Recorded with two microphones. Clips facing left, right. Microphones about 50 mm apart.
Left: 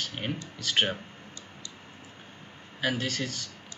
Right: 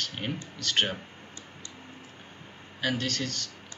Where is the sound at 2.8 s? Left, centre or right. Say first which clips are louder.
Even; centre.